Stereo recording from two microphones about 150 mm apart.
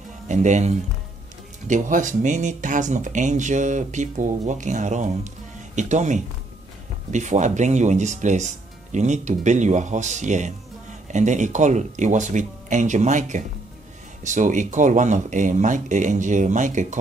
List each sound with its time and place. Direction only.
0.3 s speech: 50° right (ahead or behind)